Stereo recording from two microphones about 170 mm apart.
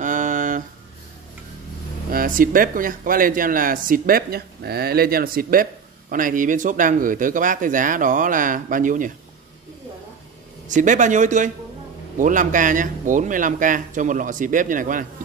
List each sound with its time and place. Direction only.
0.0 s a sound: 50° right (ahead or behind)
2.0 s speech: 55° right (ahead or behind)
10.7 s speech: 45° right (ahead or behind)